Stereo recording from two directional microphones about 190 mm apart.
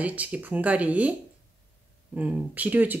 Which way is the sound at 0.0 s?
10° right (ahead or behind).